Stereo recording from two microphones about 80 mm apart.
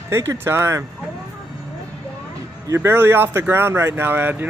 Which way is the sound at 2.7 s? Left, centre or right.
Right.